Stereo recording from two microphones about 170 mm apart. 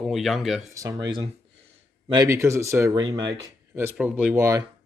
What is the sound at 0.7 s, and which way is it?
Speech, 20° right (ahead or behind).